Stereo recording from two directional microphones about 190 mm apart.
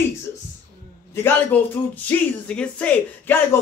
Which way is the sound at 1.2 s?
10° left (ahead or behind).